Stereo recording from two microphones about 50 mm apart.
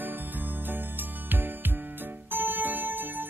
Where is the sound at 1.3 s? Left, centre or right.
Right.